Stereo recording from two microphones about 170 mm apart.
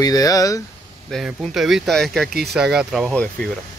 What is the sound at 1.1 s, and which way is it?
Speech, centre (ahead or behind).